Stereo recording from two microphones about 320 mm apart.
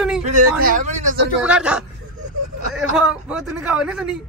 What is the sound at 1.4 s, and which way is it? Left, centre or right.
Speech, centre.